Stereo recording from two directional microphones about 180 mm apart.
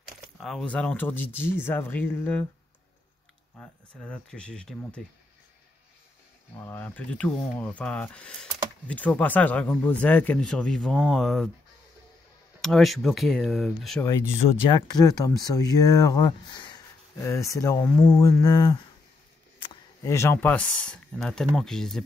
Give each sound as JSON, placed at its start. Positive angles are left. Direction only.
{"t": 0.0, "sound": "speech", "side_deg": 0}
{"t": 3.5, "sound": "speech", "side_deg": 10}
{"t": 6.5, "sound": "speech", "side_deg": 10}
{"t": 12.6, "sound": "speech", "side_deg": 0}
{"t": 14.7, "sound": "speech", "side_deg": 20}